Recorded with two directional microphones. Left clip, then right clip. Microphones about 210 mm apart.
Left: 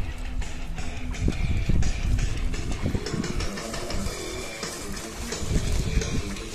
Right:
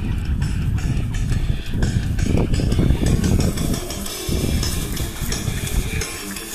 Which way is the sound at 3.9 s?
45° right (ahead or behind).